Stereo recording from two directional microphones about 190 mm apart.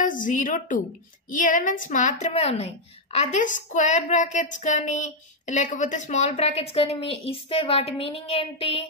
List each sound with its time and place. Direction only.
0.0 s a woman's voice: 45° left (ahead or behind)